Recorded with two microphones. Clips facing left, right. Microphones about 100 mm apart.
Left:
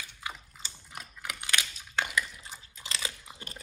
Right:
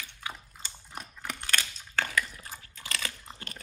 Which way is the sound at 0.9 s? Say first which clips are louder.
Right 2 dB; 5° left (ahead or behind).